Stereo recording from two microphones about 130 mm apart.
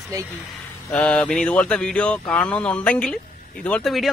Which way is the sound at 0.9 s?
10° left (ahead or behind).